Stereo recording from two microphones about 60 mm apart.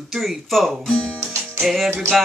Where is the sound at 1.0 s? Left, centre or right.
Centre.